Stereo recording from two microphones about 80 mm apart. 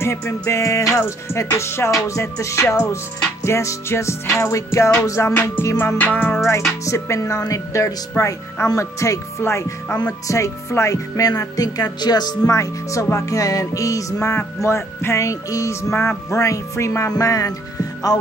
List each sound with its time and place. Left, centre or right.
0.0 s music: left
5.9 s music: left
6.5 s music: left
8.2 s speech: left
9.4 s music: left
10.2 s speech: left
12.4 s speech: left
14.2 s music: left
17.1 s music: left